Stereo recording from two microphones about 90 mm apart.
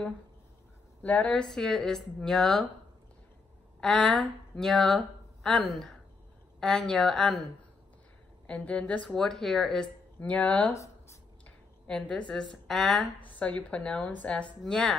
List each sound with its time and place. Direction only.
1.0 s speech: 15° left (ahead or behind)
3.8 s a woman's voice: 10° left (ahead or behind)
8.5 s speech: 15° left (ahead or behind)
10.2 s speech: 15° left (ahead or behind)
10.7 s a sound: 35° left (ahead or behind)
11.4 s a woman's voice: 15° left (ahead or behind)